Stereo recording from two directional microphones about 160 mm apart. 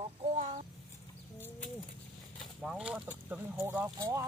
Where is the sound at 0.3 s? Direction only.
45° right (ahead or behind).